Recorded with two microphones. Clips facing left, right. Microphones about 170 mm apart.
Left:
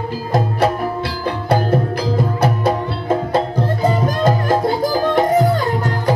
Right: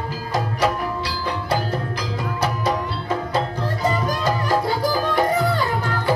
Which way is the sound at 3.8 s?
50° left (ahead or behind).